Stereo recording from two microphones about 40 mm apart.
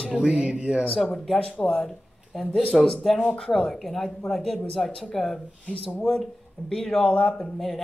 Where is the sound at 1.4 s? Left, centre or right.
Left.